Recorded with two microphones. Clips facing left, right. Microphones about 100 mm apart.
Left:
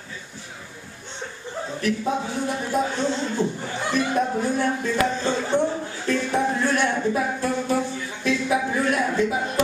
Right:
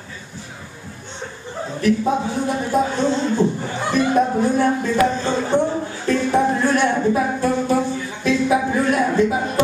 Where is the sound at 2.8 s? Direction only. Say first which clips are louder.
Right 5 dB; 30° right (ahead or behind).